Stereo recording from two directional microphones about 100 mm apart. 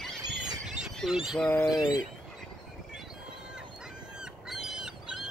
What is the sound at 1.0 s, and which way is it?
Speech, 5° right (ahead or behind).